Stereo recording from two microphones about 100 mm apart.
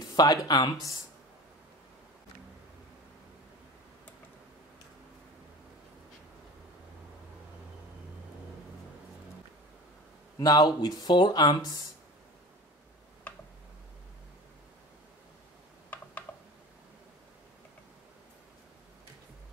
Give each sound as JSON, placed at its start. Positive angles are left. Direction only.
{"t": 0.0, "sound": "speech", "side_deg": 40}
{"t": 10.4, "sound": "speech", "side_deg": 40}
{"t": 15.9, "sound": "computer keyboard", "side_deg": 20}